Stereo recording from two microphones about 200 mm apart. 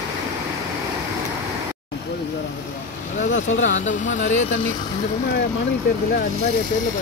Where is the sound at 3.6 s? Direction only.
40° left (ahead or behind).